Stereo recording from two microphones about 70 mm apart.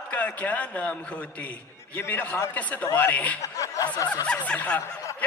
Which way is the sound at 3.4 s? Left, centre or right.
Left.